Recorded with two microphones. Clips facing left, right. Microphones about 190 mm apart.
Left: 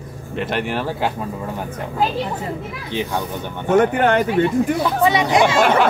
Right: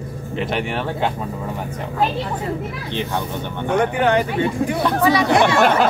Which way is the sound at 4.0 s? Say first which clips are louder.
Left 1 dB; 45° left (ahead or behind).